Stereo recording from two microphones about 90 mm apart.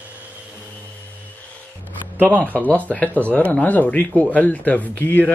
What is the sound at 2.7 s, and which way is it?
Speech, 15° left (ahead or behind).